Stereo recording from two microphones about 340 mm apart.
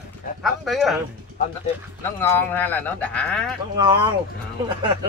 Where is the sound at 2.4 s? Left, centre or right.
Centre.